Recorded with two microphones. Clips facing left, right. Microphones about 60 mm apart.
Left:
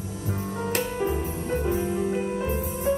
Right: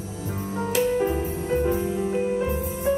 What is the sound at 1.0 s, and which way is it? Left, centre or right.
Music, centre.